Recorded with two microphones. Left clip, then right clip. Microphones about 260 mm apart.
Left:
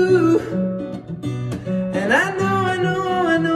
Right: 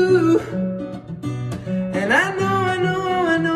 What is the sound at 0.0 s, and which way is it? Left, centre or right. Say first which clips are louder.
Music: even; centre.